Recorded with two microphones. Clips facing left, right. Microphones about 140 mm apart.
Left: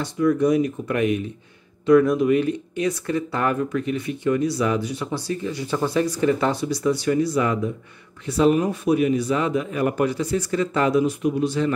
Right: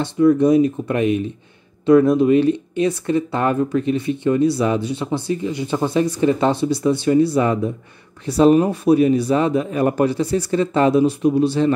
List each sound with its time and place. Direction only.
0.0 s a man's voice: 25° right (ahead or behind)